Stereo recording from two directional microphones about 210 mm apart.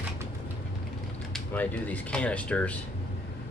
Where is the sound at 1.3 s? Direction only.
5° left (ahead or behind).